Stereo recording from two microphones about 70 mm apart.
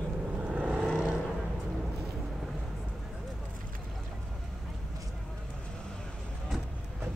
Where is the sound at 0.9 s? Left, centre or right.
Centre.